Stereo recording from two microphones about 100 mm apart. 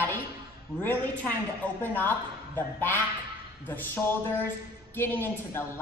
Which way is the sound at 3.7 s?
20° left (ahead or behind).